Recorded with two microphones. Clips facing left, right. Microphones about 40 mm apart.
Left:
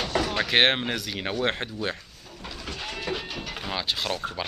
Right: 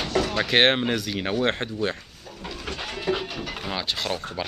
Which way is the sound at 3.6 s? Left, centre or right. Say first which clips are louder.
Even; centre.